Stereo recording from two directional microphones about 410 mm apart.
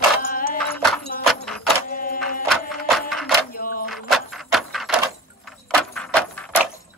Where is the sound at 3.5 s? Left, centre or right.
Left.